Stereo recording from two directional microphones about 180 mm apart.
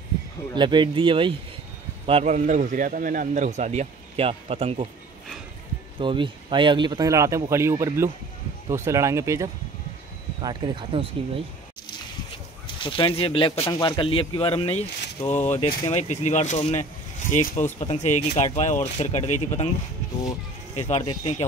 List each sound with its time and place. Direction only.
0.6 s a man's voice: 25° right (ahead or behind)
5.9 s speech: 25° right (ahead or behind)
12.8 s speech: 30° left (ahead or behind)